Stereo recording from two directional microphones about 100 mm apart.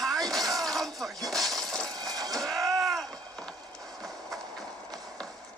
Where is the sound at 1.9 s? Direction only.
40° right (ahead or behind).